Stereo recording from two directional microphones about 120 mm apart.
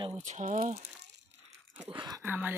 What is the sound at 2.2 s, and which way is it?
Speech, 15° right (ahead or behind).